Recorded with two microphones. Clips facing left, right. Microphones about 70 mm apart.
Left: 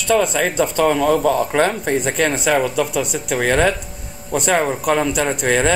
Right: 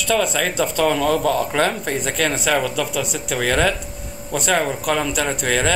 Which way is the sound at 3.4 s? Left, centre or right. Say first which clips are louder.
Left 3 dB; centre.